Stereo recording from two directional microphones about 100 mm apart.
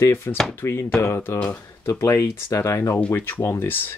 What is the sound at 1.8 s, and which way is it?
Speech, 30° left (ahead or behind).